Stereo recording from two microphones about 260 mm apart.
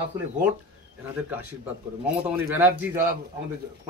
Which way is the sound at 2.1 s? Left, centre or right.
Centre.